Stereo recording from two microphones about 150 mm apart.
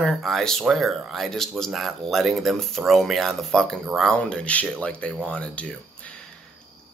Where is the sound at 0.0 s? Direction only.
Centre (ahead or behind).